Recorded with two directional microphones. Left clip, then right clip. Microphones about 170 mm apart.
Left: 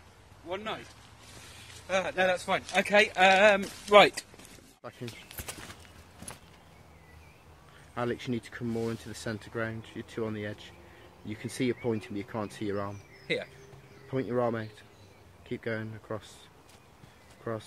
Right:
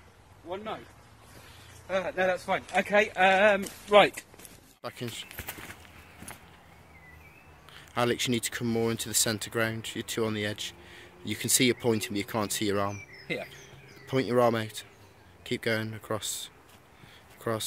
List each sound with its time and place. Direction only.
0.5 s a man's voice: 15° left (ahead or behind)
1.9 s speech: 30° left (ahead or behind)
4.8 s speech: 40° right (ahead or behind)
7.9 s speech: 40° right (ahead or behind)
13.3 s speech: 20° left (ahead or behind)
14.0 s speech: 40° right (ahead or behind)
17.4 s speech: 45° right (ahead or behind)